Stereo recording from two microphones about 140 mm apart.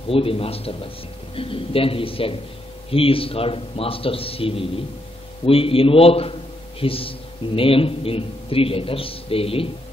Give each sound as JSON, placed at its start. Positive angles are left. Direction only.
{"t": 0.1, "sound": "a man's voice", "side_deg": 40}